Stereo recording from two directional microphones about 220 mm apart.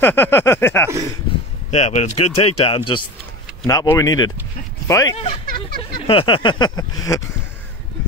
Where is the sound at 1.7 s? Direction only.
30° left (ahead or behind).